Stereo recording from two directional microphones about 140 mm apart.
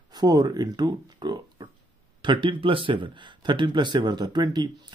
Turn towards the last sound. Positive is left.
turn(degrees=-30)  # may be behind; listen again after turning